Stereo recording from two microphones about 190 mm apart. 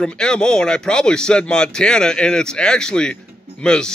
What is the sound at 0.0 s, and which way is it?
Speech, 5° left (ahead or behind).